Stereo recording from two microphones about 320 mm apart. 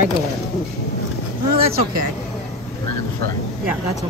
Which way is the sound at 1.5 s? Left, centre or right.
Centre.